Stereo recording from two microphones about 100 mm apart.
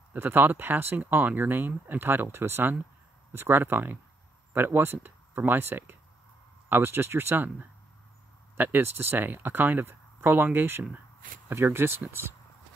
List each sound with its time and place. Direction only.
0.1 s speech: 20° right (ahead or behind)